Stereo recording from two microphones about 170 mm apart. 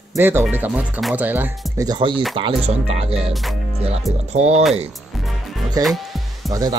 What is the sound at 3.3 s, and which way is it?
Speech, centre (ahead or behind).